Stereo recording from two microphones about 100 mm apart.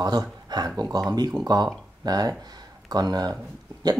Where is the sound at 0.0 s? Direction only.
40° right (ahead or behind).